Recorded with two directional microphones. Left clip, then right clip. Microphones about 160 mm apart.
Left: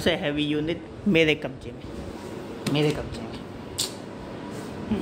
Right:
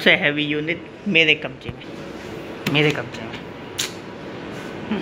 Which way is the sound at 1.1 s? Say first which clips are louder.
Right 5 dB; 35° left (ahead or behind).